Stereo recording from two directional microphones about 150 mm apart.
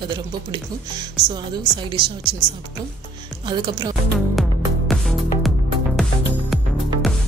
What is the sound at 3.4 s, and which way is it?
Speech, 30° right (ahead or behind).